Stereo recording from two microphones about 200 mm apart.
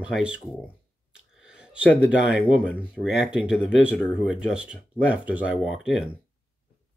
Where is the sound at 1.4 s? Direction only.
5° right (ahead or behind).